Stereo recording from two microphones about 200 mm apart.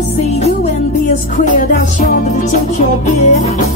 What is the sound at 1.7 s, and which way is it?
Music, 40° left (ahead or behind).